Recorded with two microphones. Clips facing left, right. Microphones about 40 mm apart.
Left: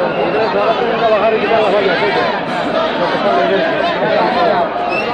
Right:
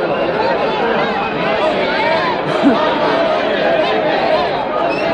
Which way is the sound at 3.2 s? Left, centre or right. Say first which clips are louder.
Left 2 dB; left.